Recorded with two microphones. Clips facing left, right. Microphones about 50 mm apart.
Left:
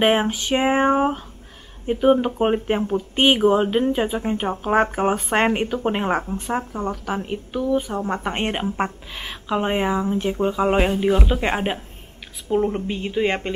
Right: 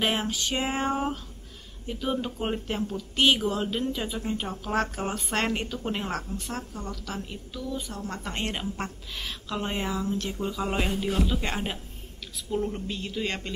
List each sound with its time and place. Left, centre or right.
0.0 s a woman's voice: left
7.9 s a woman's voice: left